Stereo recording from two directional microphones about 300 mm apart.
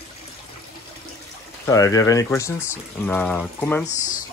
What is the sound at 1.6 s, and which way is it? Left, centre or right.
Speech, centre.